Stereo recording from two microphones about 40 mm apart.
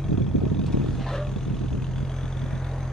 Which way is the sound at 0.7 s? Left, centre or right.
Centre.